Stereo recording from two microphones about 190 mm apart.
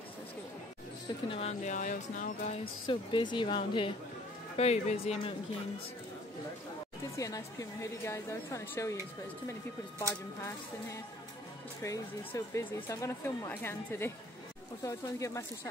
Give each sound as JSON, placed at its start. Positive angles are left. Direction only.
{"t": 1.3, "sound": "speech", "side_deg": 35}
{"t": 2.9, "sound": "speech", "side_deg": 25}
{"t": 7.2, "sound": "speech", "side_deg": 20}